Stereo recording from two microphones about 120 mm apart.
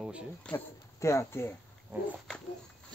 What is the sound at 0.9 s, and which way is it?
Speech, 25° left (ahead or behind).